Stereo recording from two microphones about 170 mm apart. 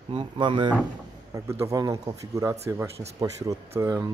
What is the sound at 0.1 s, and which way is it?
Speech, 30° right (ahead or behind).